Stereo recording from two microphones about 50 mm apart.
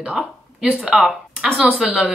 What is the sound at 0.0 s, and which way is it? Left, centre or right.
Speech, right.